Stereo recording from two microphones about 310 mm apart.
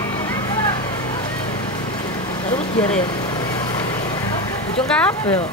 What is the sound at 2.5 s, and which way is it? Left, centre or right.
Vehicle, centre.